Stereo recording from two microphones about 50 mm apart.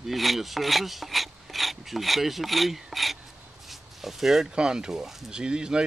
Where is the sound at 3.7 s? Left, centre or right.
Centre.